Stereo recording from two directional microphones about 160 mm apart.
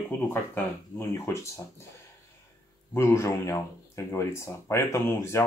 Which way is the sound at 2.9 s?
15° left (ahead or behind).